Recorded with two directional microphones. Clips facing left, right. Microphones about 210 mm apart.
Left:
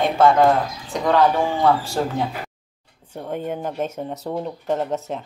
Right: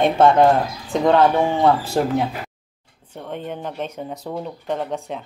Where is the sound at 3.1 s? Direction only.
10° left (ahead or behind).